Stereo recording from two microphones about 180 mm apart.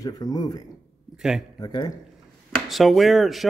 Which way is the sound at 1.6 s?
25° left (ahead or behind).